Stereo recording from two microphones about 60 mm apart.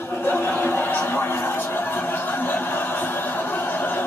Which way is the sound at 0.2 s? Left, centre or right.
Left.